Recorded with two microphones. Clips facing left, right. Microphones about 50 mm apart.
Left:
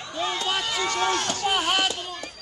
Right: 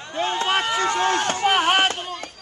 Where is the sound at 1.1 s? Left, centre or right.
Right.